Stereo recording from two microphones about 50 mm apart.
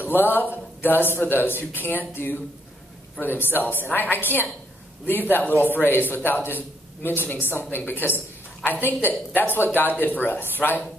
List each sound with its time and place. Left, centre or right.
0.0 s a man's voice: left